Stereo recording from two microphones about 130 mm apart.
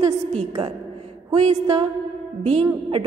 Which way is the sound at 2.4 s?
50° right (ahead or behind).